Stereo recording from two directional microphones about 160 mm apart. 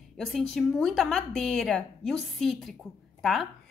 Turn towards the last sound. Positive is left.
turn(degrees=0)  # may be behind; listen again after turning